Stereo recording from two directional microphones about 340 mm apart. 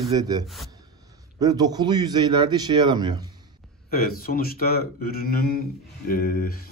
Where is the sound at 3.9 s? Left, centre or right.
Left.